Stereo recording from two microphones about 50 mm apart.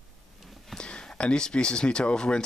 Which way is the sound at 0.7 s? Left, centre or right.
Centre.